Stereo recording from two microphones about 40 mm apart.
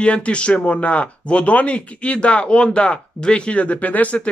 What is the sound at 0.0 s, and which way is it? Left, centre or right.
Speech, left.